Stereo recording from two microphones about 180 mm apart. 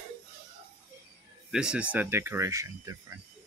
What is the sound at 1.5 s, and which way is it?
Speech, 5° right (ahead or behind).